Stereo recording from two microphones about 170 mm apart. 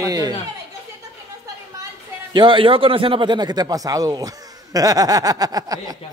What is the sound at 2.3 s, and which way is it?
Speech, 30° right (ahead or behind).